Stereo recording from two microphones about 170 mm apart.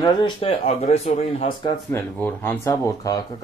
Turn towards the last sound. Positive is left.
turn(degrees=20)  # may be behind; listen again after turning